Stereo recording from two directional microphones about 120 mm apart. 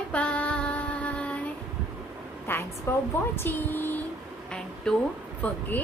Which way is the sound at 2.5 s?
20° left (ahead or behind).